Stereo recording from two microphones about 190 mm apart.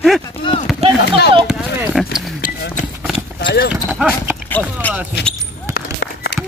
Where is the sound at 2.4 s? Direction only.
50° left (ahead or behind).